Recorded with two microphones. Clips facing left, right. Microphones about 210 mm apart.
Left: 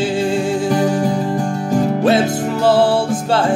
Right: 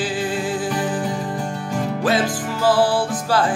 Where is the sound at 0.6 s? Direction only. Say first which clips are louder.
Left 7 dB; 45° left (ahead or behind).